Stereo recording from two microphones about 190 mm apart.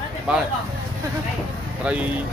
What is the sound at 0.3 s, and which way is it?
Speech, 5° right (ahead or behind).